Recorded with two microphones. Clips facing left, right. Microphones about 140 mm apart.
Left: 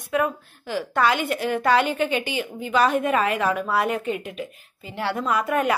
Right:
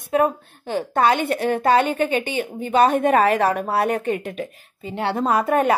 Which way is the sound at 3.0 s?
35° right (ahead or behind).